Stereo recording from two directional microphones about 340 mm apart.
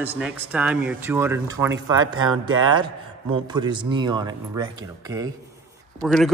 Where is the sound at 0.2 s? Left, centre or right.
Centre.